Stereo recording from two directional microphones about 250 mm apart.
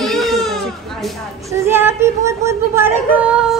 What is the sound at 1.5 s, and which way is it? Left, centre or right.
Child singing, centre.